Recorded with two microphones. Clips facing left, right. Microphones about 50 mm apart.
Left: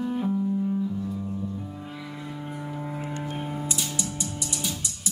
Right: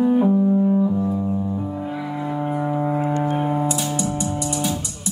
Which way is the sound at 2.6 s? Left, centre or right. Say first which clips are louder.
Right 12 dB; right.